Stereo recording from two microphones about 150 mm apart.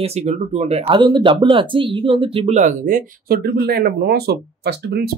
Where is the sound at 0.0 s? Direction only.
45° right (ahead or behind).